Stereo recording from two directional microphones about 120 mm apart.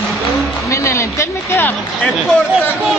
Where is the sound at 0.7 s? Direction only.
25° left (ahead or behind).